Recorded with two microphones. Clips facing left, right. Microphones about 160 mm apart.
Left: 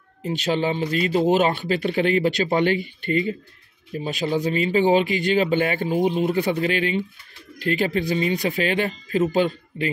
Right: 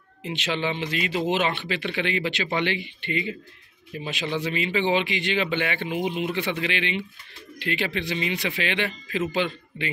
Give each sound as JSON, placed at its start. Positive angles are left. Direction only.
{"t": 0.2, "sound": "speech", "side_deg": 40}